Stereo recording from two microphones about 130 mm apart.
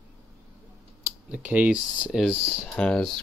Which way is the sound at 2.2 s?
10° left (ahead or behind).